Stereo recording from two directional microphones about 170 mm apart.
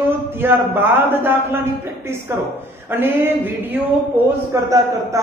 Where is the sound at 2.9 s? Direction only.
10° right (ahead or behind).